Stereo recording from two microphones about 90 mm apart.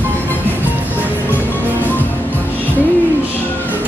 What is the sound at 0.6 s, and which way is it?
Music, 20° right (ahead or behind).